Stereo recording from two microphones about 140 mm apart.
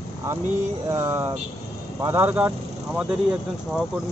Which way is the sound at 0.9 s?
20° right (ahead or behind).